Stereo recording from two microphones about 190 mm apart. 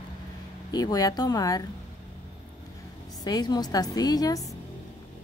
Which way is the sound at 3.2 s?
20° left (ahead or behind).